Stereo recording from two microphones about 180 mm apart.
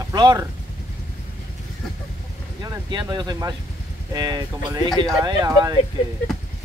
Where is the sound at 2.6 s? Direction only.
25° right (ahead or behind).